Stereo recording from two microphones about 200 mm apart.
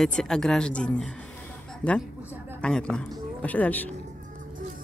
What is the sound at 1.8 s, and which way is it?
Speech, 20° left (ahead or behind).